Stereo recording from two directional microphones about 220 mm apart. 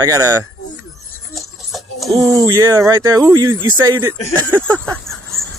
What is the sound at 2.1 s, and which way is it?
Speech, 15° right (ahead or behind).